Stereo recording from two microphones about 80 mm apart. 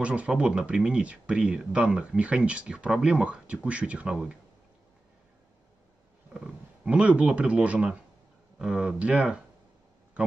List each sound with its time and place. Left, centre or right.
0.0 s speech: centre
6.3 s speech: centre